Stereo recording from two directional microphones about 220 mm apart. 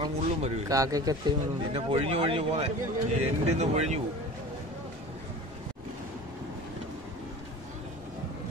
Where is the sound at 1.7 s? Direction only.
25° right (ahead or behind).